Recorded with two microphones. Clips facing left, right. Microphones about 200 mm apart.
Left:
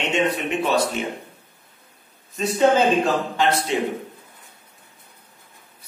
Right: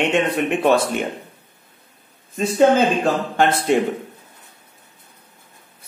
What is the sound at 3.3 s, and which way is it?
Speech, 50° right (ahead or behind).